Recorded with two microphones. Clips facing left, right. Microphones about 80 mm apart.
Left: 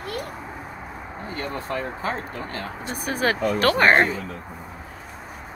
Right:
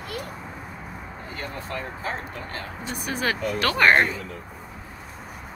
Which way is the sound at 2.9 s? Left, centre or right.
Left.